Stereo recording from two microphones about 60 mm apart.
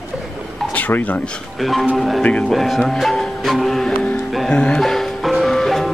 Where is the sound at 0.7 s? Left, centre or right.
Left.